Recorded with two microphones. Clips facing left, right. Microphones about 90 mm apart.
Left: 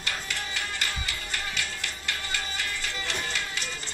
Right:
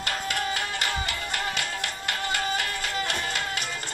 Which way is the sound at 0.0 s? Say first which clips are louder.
Right 6 dB; 55° right (ahead or behind).